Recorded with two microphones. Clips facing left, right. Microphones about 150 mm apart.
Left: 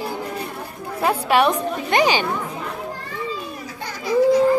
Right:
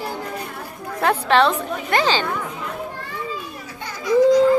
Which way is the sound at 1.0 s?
10° left (ahead or behind).